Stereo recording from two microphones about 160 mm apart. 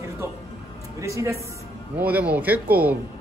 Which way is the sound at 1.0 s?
15° right (ahead or behind).